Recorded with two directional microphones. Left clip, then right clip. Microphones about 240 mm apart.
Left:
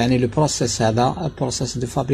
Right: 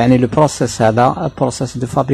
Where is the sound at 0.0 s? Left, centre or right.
Right.